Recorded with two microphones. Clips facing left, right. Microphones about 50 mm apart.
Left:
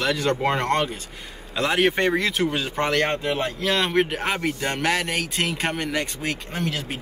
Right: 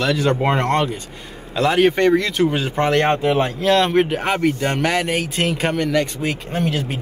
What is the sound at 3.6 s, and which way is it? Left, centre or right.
A man's voice, centre.